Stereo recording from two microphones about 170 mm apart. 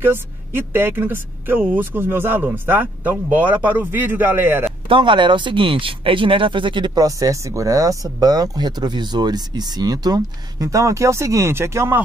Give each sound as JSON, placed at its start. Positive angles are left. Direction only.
{"t": 0.0, "sound": "speech", "side_deg": -15}
{"t": 4.8, "sound": "speech", "side_deg": -30}